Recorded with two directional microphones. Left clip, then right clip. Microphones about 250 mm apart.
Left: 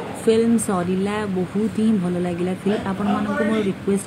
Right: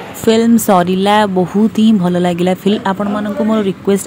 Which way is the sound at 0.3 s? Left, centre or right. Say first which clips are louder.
Right 8 dB; right.